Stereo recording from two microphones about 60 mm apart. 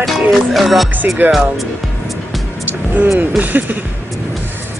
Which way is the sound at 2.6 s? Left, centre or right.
Right.